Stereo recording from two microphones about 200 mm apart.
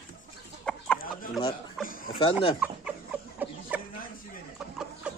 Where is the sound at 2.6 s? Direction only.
5° right (ahead or behind).